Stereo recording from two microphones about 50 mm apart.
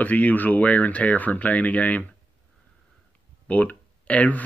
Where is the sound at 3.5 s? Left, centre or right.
Left.